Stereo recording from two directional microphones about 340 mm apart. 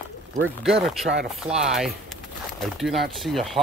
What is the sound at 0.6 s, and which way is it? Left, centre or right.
Speech, centre.